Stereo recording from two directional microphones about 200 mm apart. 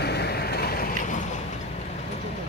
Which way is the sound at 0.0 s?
55° left (ahead or behind).